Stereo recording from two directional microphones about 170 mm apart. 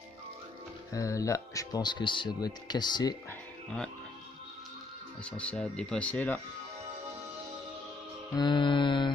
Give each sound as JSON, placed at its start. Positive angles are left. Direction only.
{"t": 0.9, "sound": "speech", "side_deg": 20}
{"t": 3.3, "sound": "music", "side_deg": 5}
{"t": 5.2, "sound": "speech", "side_deg": 5}
{"t": 8.4, "sound": "speech", "side_deg": 25}